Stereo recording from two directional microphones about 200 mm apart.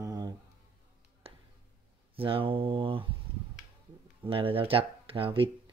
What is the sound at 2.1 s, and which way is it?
Speech, 25° right (ahead or behind).